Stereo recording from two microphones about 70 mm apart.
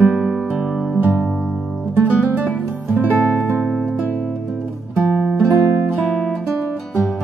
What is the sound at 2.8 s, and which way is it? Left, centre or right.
Music, centre.